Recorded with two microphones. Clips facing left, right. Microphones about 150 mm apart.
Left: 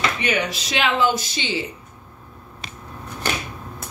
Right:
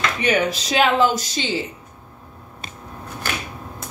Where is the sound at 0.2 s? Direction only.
40° right (ahead or behind).